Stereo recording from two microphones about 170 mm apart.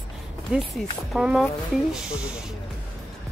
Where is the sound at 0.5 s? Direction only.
10° right (ahead or behind).